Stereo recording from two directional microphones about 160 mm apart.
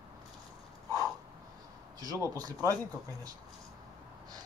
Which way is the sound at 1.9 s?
20° right (ahead or behind).